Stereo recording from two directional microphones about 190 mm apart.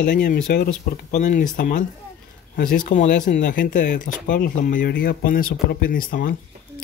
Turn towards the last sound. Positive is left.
turn(degrees=50)  # may be behind; listen again after turning